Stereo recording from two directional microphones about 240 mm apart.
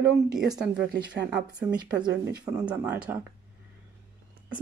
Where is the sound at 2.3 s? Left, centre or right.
Centre.